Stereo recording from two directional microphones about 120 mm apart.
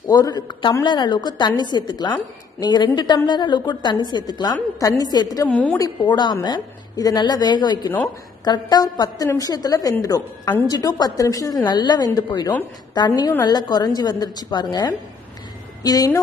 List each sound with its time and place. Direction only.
0.1 s a woman's voice: 30° left (ahead or behind)
5.5 s a woman's voice: 10° left (ahead or behind)
5.8 s a woman's voice: 40° left (ahead or behind)